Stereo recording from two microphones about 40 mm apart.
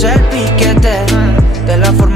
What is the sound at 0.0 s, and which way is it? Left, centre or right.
Music, centre.